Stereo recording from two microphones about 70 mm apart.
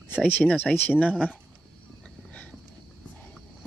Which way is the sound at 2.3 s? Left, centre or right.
Centre.